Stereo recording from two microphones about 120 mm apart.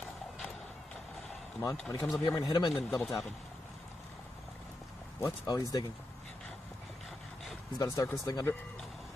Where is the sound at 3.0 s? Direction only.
5° left (ahead or behind).